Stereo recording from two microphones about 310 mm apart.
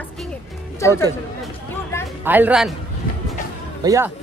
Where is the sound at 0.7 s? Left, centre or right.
Centre.